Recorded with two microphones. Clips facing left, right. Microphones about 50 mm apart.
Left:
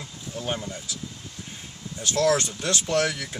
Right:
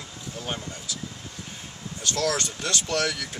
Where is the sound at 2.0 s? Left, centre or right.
Left.